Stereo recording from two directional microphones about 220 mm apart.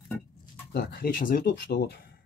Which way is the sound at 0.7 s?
45° left (ahead or behind).